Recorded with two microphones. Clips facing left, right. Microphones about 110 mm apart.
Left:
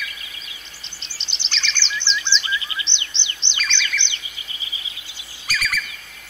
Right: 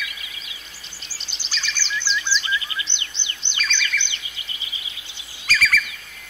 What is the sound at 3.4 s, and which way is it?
Bird vocalization, 25° left (ahead or behind).